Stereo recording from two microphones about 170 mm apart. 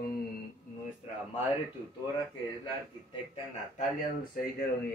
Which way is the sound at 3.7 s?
55° left (ahead or behind).